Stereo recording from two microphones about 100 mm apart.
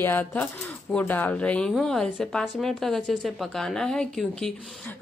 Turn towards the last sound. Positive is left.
turn(degrees=5)  # may be behind; listen again after turning